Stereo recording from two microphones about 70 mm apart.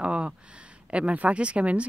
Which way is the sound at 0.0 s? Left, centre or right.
Centre.